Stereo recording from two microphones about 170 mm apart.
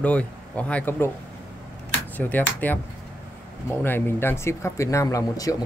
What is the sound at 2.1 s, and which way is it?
Speech, 10° left (ahead or behind).